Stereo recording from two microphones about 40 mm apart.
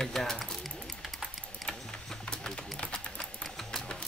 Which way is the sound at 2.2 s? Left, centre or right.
Left.